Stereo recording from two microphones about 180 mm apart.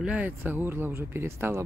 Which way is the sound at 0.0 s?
10° right (ahead or behind).